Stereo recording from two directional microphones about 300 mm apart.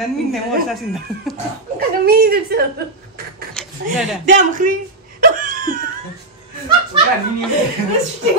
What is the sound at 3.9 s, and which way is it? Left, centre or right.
Speech, centre.